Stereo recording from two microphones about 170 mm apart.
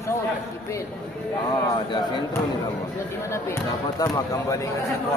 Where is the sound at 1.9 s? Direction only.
25° left (ahead or behind).